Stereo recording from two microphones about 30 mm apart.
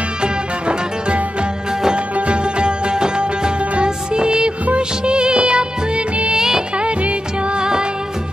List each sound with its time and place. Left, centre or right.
0.2 s music: right
4.7 s music of bollywood: right
6.3 s music of bollywood: centre
6.8 s music of bollywood: right
7.5 s music: right